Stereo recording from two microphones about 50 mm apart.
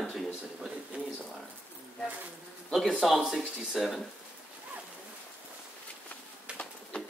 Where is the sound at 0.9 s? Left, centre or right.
Right.